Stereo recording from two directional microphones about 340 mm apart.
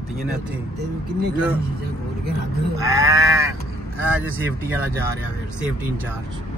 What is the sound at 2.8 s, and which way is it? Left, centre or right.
Sheep, centre.